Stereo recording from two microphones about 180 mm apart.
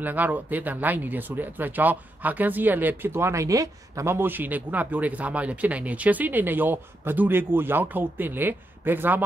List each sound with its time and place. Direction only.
0.0 s speech: 10° right (ahead or behind)